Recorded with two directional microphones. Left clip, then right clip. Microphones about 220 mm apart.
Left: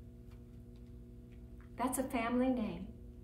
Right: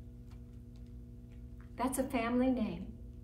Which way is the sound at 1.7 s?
Centre (ahead or behind).